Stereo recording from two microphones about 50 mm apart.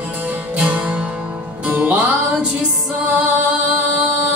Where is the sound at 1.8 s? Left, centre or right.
Right.